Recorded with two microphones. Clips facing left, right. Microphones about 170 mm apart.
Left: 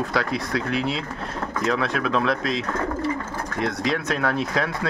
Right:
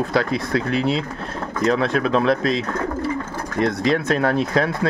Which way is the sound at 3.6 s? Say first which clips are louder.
Right 6 dB; 5° left (ahead or behind).